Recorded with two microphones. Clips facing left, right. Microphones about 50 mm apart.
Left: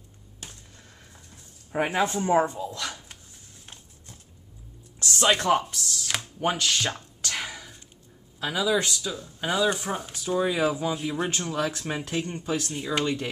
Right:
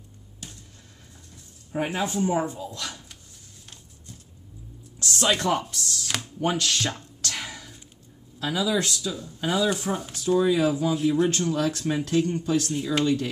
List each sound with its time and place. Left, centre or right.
1.7 s speech: left
2.6 s speech: centre
5.1 s a sound: centre
8.4 s speech: centre